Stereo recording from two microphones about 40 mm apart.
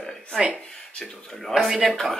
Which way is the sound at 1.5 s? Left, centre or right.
Centre.